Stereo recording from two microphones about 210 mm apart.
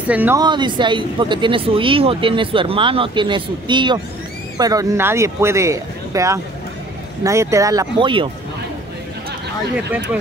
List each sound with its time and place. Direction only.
0.0 s speech: 5° right (ahead or behind)
0.4 s speech: 20° right (ahead or behind)